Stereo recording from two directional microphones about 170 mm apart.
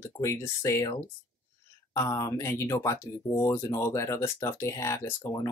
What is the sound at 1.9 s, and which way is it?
Speech, 20° left (ahead or behind).